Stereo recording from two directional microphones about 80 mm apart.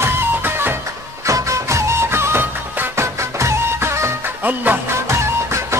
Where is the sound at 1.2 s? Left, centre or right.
Right.